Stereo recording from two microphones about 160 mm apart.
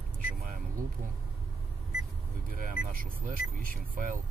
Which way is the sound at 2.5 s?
60° right (ahead or behind).